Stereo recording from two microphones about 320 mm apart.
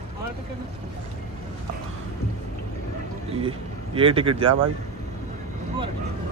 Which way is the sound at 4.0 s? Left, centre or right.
Centre.